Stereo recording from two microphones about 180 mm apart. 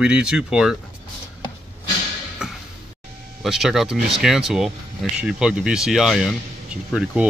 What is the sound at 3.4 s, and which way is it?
Speech, centre (ahead or behind).